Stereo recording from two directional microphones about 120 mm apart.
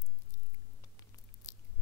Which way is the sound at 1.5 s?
30° left (ahead or behind).